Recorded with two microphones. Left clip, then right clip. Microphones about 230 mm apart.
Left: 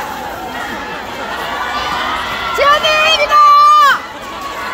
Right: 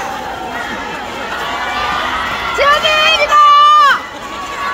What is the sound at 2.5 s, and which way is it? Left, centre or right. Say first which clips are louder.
Run: even; left.